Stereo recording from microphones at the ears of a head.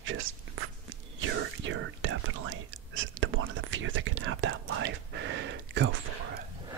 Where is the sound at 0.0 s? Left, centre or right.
Right.